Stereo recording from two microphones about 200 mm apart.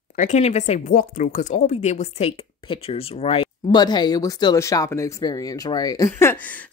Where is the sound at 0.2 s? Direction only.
35° left (ahead or behind).